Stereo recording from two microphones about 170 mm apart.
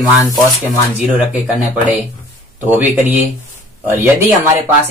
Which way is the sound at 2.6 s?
10° right (ahead or behind).